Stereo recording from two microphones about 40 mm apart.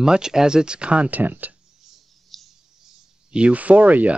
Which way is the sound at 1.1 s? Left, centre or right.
Right.